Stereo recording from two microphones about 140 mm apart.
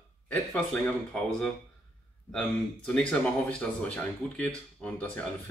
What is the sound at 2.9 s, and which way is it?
Speech, 10° left (ahead or behind).